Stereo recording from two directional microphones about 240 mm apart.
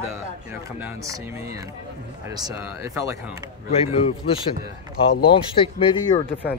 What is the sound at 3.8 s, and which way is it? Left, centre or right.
Speech, left.